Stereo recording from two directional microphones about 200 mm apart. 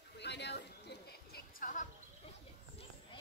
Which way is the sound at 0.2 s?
55° left (ahead or behind).